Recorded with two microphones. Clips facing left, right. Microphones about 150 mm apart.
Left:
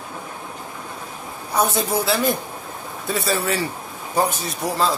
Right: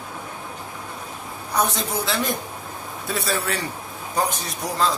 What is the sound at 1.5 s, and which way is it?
A man's voice, 5° left (ahead or behind).